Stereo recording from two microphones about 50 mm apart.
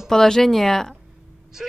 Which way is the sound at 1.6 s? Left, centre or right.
Centre.